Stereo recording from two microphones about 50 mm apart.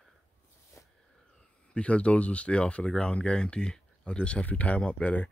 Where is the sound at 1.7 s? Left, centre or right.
Left.